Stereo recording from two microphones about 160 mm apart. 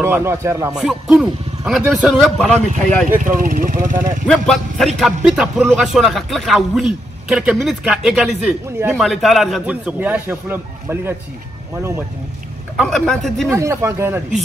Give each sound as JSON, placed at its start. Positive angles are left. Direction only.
{"t": 0.0, "sound": "a man's voice", "side_deg": -15}
{"t": 0.7, "sound": "a man's voice", "side_deg": 0}
{"t": 3.3, "sound": "speech", "side_deg": -60}
{"t": 4.3, "sound": "a man's voice", "side_deg": 5}
{"t": 12.7, "sound": "a man's voice", "side_deg": 5}
{"t": 13.5, "sound": "a man's voice", "side_deg": -15}